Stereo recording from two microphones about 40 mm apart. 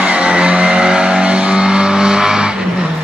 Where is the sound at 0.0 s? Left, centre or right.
Right.